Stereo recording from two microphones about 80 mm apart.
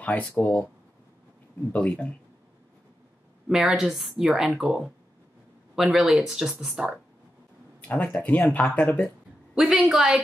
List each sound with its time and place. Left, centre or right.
0.0 s speech: centre
1.7 s speech: centre
3.4 s speech: centre
7.8 s speech: centre
9.6 s a woman's voice: centre